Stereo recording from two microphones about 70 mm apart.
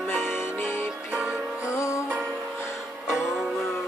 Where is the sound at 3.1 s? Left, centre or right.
Centre.